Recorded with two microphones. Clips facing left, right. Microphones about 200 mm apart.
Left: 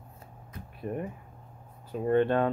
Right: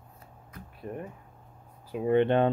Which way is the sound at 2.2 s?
25° right (ahead or behind).